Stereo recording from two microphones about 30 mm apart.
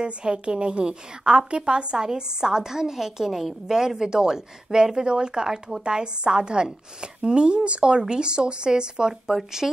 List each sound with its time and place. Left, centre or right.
0.0 s a woman's voice: right
9.3 s speech: centre